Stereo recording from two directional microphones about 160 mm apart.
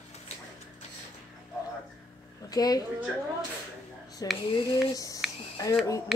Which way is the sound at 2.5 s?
25° left (ahead or behind).